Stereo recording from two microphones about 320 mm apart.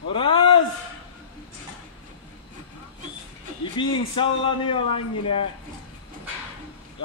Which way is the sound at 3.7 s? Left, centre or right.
Centre.